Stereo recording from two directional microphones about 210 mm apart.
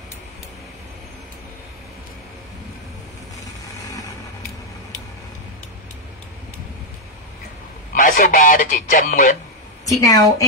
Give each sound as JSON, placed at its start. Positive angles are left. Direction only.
{"t": 7.9, "sound": "speech", "side_deg": 40}
{"t": 9.8, "sound": "a woman's voice", "side_deg": 15}